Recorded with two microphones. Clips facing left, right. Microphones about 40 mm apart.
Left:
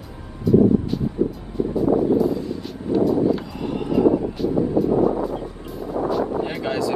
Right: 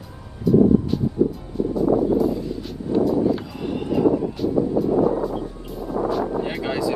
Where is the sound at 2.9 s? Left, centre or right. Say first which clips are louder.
Left 1 dB; centre.